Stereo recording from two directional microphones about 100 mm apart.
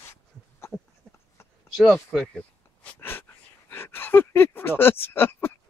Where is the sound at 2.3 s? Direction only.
20° left (ahead or behind).